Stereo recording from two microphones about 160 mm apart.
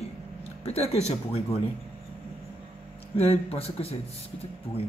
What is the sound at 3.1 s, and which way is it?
Speech, 40° left (ahead or behind).